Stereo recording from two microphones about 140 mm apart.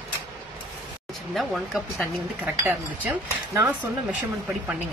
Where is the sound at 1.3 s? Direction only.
Centre (ahead or behind).